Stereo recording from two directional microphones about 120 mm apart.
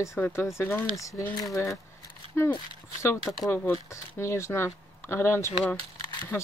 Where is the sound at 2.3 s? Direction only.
20° left (ahead or behind).